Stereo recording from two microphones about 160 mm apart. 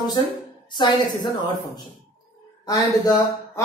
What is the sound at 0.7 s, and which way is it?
Speech, 30° left (ahead or behind).